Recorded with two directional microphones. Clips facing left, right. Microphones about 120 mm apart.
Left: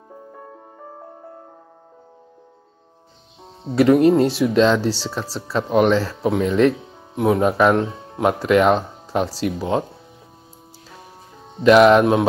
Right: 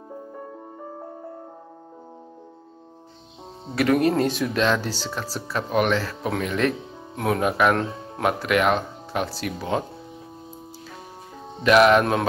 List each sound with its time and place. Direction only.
3.7 s speech: 20° left (ahead or behind)
11.6 s speech: 20° left (ahead or behind)